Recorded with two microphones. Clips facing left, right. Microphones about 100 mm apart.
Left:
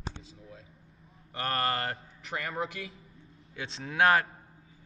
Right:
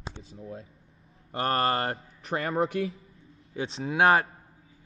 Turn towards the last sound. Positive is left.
turn(degrees=-25)  # may be behind; listen again after turning